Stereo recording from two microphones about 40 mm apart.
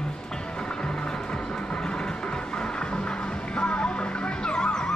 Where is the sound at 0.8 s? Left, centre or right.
Left.